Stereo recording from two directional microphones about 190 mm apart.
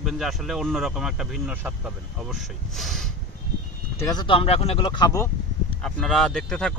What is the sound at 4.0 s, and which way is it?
Speech, 20° left (ahead or behind).